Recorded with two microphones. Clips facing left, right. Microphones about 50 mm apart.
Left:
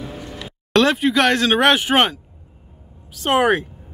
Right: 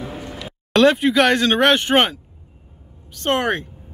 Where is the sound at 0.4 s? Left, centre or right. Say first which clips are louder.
Right 2 dB; centre.